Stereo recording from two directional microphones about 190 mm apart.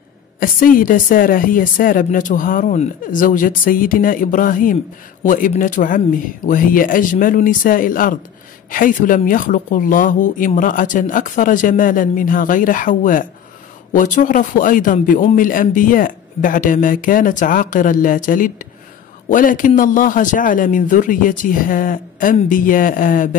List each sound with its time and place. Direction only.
0.4 s a man's voice: 45° left (ahead or behind)